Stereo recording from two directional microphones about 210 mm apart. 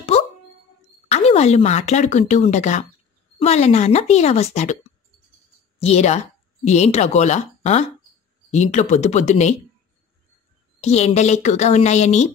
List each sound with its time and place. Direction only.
1.0 s a woman's voice: 30° left (ahead or behind)
5.8 s a woman's voice: 30° left (ahead or behind)
10.8 s a woman's voice: 30° left (ahead or behind)